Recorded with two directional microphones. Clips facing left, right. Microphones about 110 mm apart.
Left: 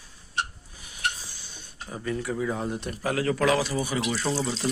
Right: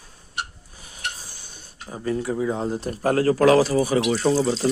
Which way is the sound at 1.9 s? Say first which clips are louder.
Right 5 dB; 30° right (ahead or behind).